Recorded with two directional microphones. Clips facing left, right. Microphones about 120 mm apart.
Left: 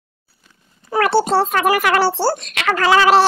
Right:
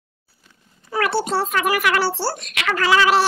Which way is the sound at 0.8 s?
45° left (ahead or behind).